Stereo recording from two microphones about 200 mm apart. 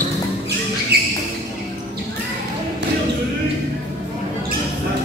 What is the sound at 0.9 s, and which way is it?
Music, 55° right (ahead or behind).